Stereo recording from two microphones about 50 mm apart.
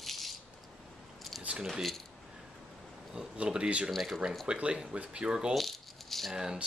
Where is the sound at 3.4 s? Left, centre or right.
Right.